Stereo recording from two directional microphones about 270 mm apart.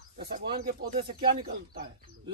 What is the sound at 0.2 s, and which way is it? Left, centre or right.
Speech, right.